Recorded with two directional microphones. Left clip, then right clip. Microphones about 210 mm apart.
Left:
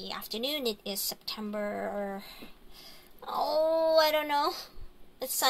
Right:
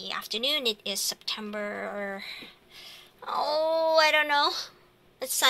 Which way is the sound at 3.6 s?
5° right (ahead or behind).